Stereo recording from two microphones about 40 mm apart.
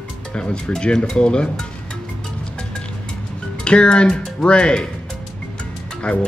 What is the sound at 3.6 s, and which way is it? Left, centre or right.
Speech, left.